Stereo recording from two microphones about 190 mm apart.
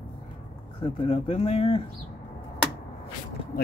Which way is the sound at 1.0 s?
30° left (ahead or behind).